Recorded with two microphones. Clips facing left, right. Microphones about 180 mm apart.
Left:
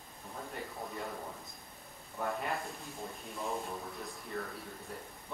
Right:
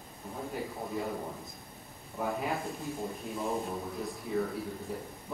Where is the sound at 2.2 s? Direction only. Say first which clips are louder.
Right 3 dB; centre (ahead or behind).